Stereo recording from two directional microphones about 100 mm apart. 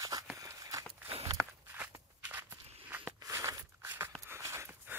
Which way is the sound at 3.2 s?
30° right (ahead or behind).